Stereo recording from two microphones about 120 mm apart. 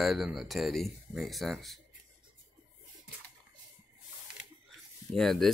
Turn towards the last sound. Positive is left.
turn(degrees=0)  # may be behind; listen again after turning